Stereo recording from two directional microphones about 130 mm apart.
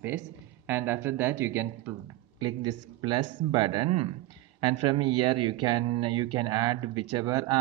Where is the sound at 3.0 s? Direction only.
35° right (ahead or behind).